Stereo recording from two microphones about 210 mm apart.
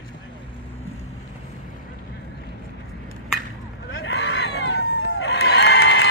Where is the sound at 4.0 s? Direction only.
60° left (ahead or behind).